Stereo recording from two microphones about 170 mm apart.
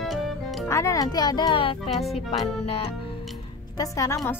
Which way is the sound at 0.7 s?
15° left (ahead or behind).